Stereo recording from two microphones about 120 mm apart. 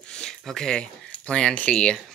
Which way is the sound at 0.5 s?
5° left (ahead or behind).